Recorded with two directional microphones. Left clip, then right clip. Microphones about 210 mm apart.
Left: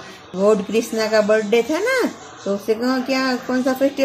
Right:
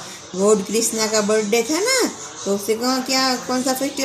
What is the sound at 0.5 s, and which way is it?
Speech, 35° left (ahead or behind).